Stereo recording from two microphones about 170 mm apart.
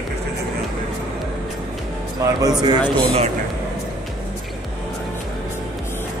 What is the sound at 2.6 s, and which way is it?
Speech, 25° right (ahead or behind).